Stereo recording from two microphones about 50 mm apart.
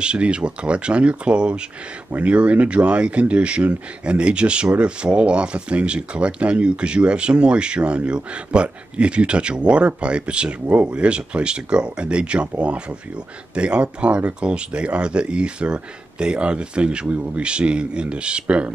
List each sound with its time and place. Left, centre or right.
0.0 s speech: right